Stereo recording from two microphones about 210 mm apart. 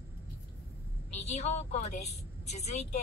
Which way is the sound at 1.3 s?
30° left (ahead or behind).